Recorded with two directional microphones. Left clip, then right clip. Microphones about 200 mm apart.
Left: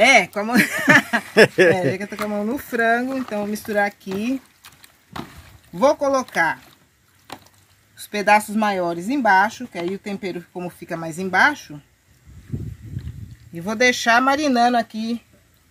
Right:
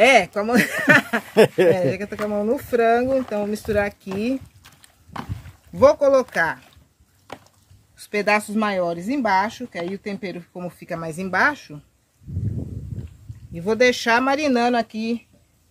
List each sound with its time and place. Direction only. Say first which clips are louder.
0.0 s speech: even; 15° right (ahead or behind)
1.3 s speech: left 2 dB; 5° right (ahead or behind)
5.8 s speech: right 3 dB; 15° right (ahead or behind)
8.3 s speech: left 5 dB; 5° right (ahead or behind)
13.7 s speech: even; 25° right (ahead or behind)